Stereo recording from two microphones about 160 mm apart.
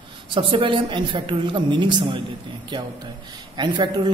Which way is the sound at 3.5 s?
25° right (ahead or behind).